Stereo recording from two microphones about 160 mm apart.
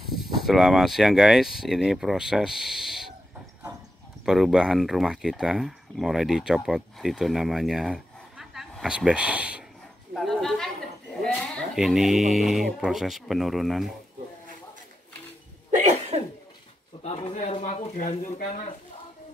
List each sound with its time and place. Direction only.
0.2 s speech: centre (ahead or behind)
4.3 s speech: 5° right (ahead or behind)
10.1 s a sound: centre (ahead or behind)
11.3 s speech: centre (ahead or behind)
15.7 s cough: 45° right (ahead or behind)
17.0 s speech: 40° left (ahead or behind)